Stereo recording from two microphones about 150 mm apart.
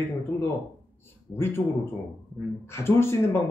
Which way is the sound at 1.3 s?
15° left (ahead or behind).